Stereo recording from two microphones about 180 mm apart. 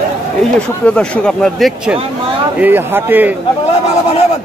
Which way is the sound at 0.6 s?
5° left (ahead or behind).